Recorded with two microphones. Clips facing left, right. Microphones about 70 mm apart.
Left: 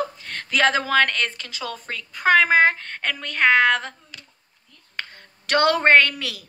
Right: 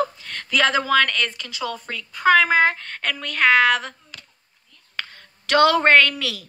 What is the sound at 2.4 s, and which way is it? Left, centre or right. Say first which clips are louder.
A woman's voice: left 1 dB; left.